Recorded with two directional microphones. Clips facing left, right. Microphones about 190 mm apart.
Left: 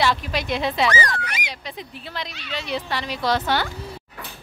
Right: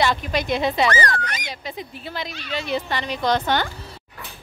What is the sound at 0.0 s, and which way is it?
Speech, centre (ahead or behind).